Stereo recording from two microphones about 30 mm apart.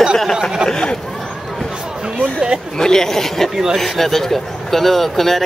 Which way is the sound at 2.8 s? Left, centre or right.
Centre.